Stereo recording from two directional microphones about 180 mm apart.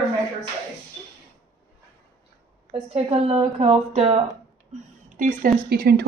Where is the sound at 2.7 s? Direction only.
30° right (ahead or behind).